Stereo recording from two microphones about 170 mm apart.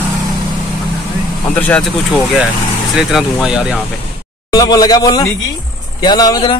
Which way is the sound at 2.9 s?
Centre (ahead or behind).